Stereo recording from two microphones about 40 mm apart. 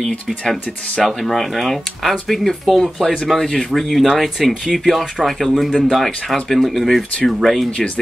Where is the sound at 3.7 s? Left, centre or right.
Centre.